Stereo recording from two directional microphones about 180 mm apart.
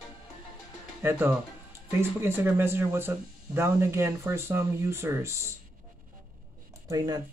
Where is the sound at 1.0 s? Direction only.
15° right (ahead or behind).